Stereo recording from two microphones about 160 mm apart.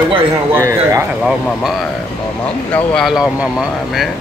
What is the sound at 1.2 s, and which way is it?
Speech, centre (ahead or behind).